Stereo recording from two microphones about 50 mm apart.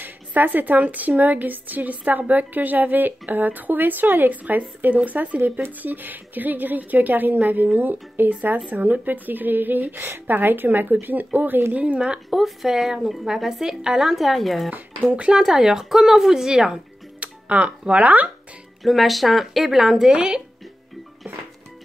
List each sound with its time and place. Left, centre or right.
0.0 s a woman's voice: right
12.3 s speech: centre
14.7 s speech: right
15.3 s a woman's voice: centre; by 18.3 s right
18.8 s speech: centre
20.1 s speech: centre